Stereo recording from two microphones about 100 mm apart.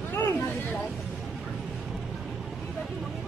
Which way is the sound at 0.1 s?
25° left (ahead or behind).